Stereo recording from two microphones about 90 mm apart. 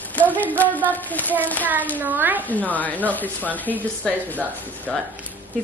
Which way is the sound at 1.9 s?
20° right (ahead or behind).